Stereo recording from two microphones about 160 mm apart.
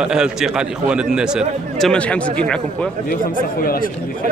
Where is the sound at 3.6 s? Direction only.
65° left (ahead or behind).